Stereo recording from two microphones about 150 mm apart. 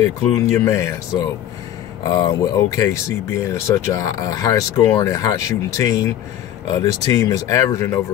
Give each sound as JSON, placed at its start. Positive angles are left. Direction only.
{"t": 0.0, "sound": "speech", "side_deg": 20}
{"t": 2.0, "sound": "speech", "side_deg": 25}